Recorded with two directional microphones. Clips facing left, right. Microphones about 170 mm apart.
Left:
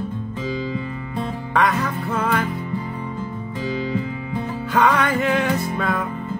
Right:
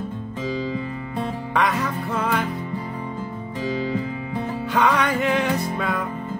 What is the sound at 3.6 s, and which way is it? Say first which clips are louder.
Music: even; 40° right (ahead or behind).